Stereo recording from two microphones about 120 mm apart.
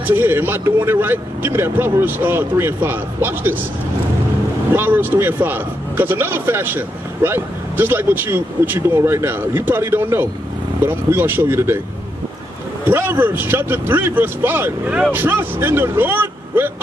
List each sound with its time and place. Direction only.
0.0 s speech: 15° right (ahead or behind)
4.7 s speech: 15° right (ahead or behind)
12.8 s speech: 15° right (ahead or behind)